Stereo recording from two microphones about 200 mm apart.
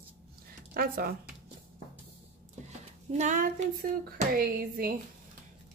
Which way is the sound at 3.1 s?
40° right (ahead or behind).